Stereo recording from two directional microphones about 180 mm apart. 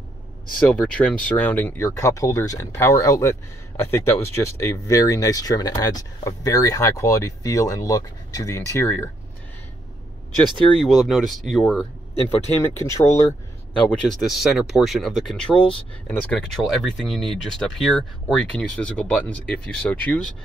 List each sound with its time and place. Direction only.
0.6 s speech: 5° left (ahead or behind)
10.8 s speech: centre (ahead or behind)
12.6 s speech: 15° left (ahead or behind)
13.8 s speech: centre (ahead or behind)